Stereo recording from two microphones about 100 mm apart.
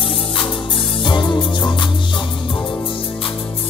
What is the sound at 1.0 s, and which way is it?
Music, 50° left (ahead or behind).